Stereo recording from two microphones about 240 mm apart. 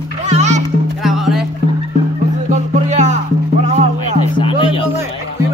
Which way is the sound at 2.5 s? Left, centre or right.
Right.